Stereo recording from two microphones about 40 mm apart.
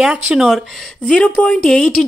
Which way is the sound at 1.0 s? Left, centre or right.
Left.